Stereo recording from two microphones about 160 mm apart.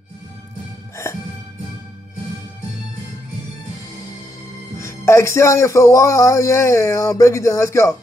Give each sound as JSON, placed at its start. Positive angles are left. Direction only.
{"t": 4.7, "sound": "speech", "side_deg": 15}